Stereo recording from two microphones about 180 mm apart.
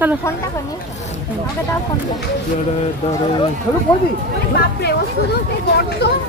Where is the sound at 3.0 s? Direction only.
35° left (ahead or behind).